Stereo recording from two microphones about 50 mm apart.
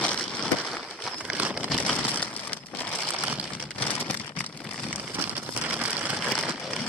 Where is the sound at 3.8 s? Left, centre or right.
Left.